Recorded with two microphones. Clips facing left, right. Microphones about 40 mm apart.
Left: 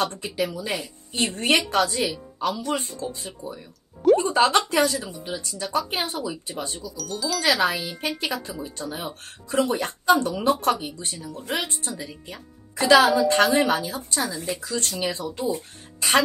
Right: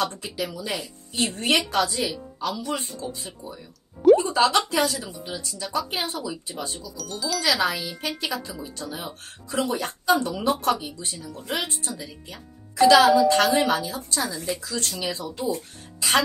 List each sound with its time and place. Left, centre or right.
0.0 s speech: left
7.0 s speech: centre
7.3 s speech: left
13.0 s speech: centre
13.3 s a woman's voice: left